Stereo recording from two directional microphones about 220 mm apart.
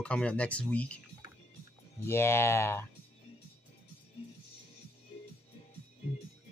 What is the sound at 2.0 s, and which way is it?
Speech, 10° left (ahead or behind).